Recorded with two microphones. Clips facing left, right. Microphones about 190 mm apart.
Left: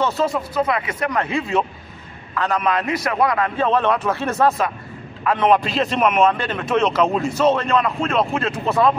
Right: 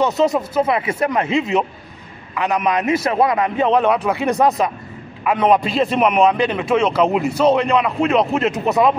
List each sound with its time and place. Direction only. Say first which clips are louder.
0.0 s speech: right 4 dB; 20° right (ahead or behind)